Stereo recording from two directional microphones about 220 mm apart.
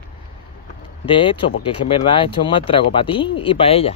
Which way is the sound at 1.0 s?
20° left (ahead or behind).